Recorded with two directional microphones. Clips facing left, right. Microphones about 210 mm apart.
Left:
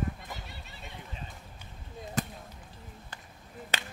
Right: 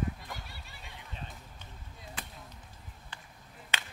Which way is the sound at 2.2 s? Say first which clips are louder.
Left 14 dB; 45° left (ahead or behind).